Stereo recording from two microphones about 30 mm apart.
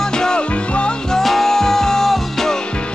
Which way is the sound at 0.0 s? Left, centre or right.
Left.